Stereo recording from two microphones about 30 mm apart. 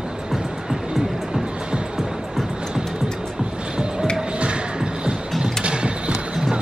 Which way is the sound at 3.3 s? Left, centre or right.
Right.